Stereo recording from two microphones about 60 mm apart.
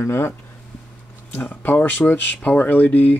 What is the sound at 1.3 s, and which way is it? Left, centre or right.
Speech, left.